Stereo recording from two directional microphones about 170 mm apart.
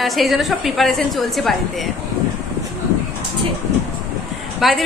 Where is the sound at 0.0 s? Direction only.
Centre (ahead or behind).